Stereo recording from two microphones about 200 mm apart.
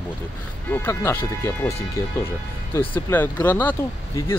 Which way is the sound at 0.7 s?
10° left (ahead or behind).